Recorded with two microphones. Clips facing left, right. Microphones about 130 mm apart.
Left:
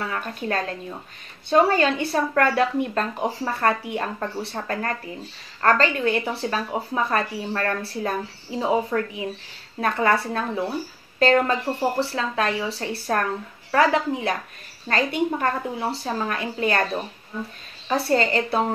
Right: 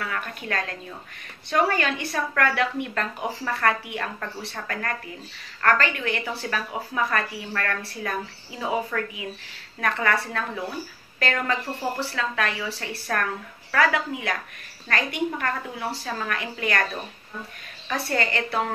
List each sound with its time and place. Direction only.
0.0 s speech: 30° left (ahead or behind)
17.8 s speech: 25° left (ahead or behind)